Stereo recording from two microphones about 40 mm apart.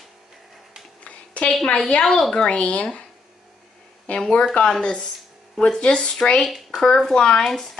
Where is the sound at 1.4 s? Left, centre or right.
Left.